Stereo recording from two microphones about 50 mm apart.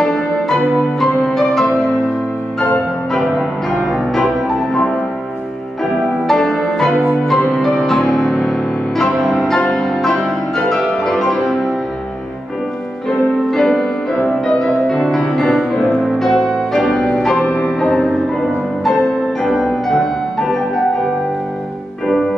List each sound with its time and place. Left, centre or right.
0.0 s music: centre
3.3 s music: centre
6.2 s music: centre
8.9 s music: centre
13.3 s music: centre